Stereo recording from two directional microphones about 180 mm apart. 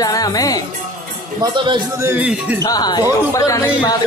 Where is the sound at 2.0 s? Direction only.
10° right (ahead or behind).